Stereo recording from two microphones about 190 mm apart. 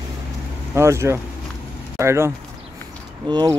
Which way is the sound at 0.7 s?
15° right (ahead or behind).